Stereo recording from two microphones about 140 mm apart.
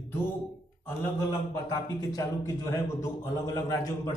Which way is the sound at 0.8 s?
20° left (ahead or behind).